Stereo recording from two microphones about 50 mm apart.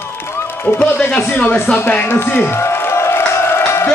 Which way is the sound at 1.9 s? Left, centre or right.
Left.